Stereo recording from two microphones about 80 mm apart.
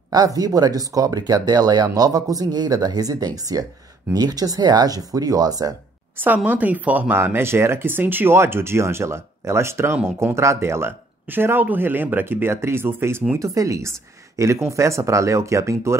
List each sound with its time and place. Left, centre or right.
0.1 s speech: right
6.1 s speech: right
13.4 s speech: right